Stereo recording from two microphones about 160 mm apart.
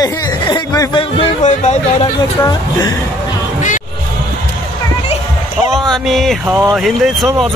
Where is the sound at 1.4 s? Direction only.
45° left (ahead or behind).